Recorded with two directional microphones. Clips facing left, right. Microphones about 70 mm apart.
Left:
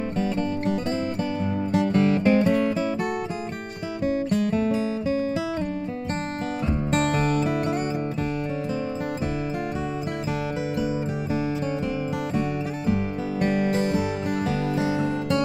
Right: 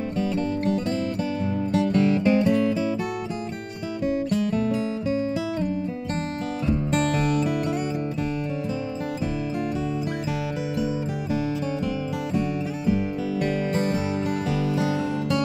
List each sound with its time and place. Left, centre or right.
2.0 s music: left
4.0 s music: left
7.1 s music: left
13.4 s music: left
14.8 s music: left